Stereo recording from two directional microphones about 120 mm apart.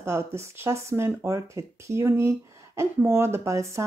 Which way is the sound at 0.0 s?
20° right (ahead or behind).